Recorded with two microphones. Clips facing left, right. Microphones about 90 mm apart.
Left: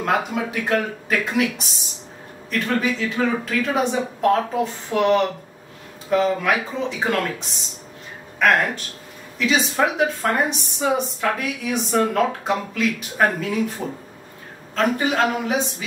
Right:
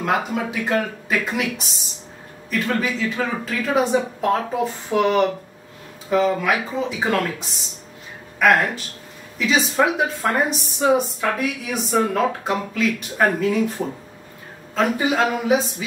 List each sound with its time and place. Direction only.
0.0 s speech: centre (ahead or behind)